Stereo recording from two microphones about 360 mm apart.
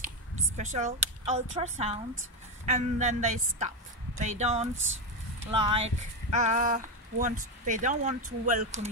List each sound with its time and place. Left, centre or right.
0.6 s speech: centre
4.7 s speech: right
5.4 s speech: centre